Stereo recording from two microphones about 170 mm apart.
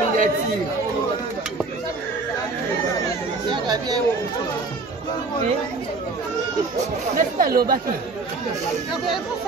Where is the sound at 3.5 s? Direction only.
25° right (ahead or behind).